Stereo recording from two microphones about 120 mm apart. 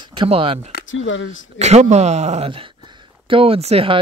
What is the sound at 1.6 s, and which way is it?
Speech, 65° right (ahead or behind).